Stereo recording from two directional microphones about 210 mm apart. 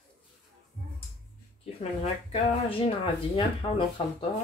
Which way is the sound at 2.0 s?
30° left (ahead or behind).